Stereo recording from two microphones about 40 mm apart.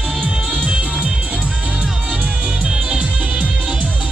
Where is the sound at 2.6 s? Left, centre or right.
Right.